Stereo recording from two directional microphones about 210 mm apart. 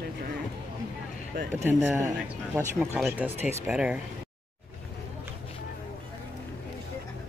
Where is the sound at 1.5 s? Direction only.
10° right (ahead or behind).